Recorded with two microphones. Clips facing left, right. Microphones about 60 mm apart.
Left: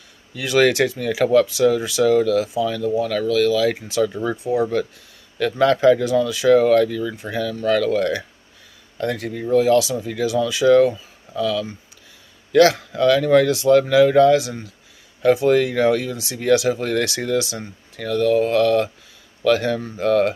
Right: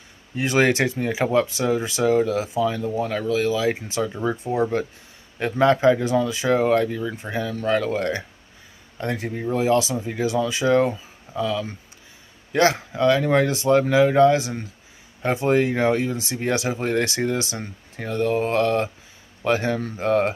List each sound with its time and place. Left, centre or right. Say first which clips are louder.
0.3 s speech: left 2 dB; right
4.4 s speech: left 7 dB; right
5.4 s speech: left 2 dB; right